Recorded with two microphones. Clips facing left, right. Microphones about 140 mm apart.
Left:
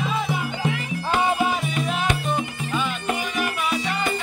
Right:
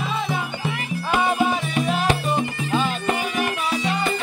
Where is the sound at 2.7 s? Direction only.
30° right (ahead or behind).